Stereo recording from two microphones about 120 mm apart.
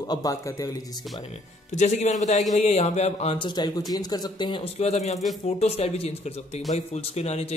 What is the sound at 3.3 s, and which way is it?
Speech, 40° left (ahead or behind).